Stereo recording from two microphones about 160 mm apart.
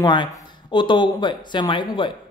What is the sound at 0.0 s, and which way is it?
Speech, 30° left (ahead or behind).